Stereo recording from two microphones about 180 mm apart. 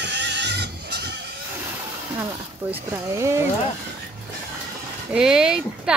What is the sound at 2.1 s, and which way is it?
Speech, 10° right (ahead or behind).